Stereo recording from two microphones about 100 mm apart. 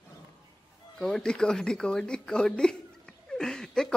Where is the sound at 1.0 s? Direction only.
5° left (ahead or behind).